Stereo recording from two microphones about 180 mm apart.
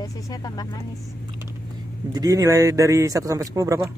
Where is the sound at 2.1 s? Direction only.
20° right (ahead or behind).